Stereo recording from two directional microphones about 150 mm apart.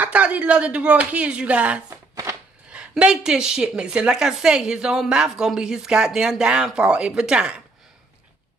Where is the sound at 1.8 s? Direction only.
20° right (ahead or behind).